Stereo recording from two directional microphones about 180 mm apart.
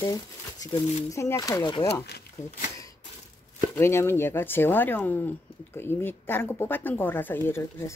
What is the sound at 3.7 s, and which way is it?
Speech, 15° left (ahead or behind).